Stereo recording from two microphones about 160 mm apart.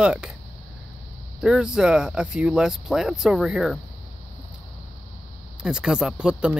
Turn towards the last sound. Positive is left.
turn(degrees=-5)  # may be behind; listen again after turning